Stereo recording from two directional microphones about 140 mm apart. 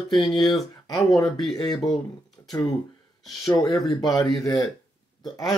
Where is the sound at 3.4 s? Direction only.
25° left (ahead or behind).